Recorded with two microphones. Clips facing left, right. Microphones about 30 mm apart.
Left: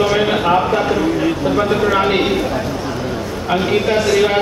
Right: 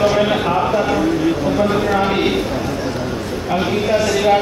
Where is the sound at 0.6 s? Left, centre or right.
Centre.